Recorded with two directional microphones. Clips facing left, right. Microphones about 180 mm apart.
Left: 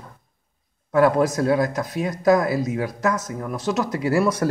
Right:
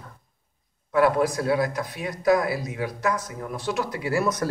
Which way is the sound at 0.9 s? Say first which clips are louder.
Left 3 dB; 45° left (ahead or behind).